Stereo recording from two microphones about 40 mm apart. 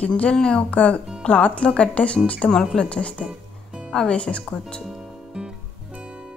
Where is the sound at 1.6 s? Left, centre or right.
Left.